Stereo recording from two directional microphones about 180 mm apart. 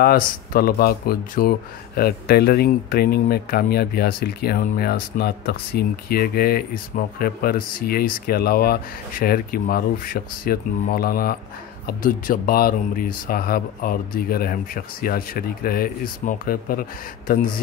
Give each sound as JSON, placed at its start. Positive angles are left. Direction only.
{"t": 0.0, "sound": "speech", "side_deg": 55}